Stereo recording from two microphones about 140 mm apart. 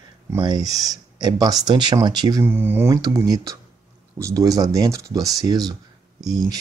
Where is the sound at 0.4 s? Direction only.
30° right (ahead or behind).